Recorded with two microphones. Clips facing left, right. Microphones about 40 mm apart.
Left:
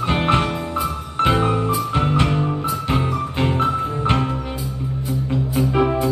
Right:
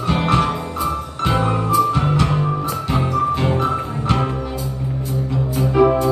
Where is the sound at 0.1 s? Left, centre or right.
Left.